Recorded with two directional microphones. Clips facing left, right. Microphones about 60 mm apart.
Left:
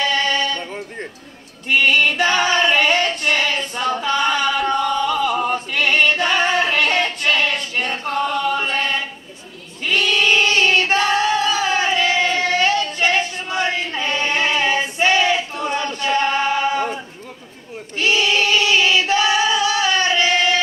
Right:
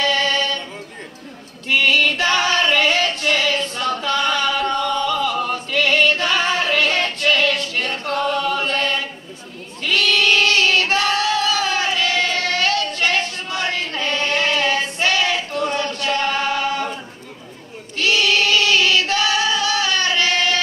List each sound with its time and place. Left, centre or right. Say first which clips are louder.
0.0 s a sound: even; centre
1.7 s female singing: left 1 dB; centre
17.9 s singing: even; left